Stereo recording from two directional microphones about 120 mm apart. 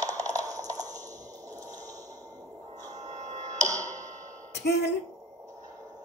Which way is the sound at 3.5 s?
25° right (ahead or behind).